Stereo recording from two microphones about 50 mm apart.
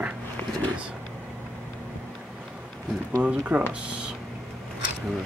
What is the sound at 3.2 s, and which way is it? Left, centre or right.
Speech, right.